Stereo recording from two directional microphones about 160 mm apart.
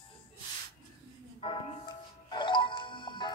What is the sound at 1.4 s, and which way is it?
Music, 35° left (ahead or behind).